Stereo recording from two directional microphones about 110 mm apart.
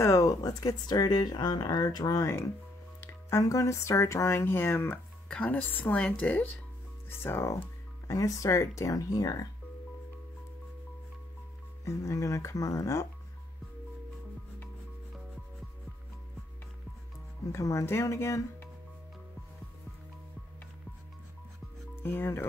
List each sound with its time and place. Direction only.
0.0 s speech: 30° left (ahead or behind)
11.8 s speech: 30° left (ahead or behind)
17.5 s speech: 25° left (ahead or behind)
22.0 s speech: 20° left (ahead or behind)